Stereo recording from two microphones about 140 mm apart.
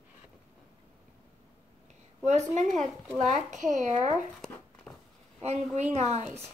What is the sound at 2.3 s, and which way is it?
A child's voice, 55° right (ahead or behind).